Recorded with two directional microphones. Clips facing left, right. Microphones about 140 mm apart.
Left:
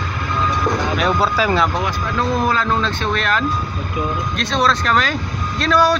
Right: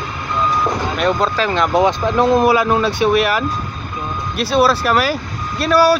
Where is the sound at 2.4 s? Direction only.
10° right (ahead or behind).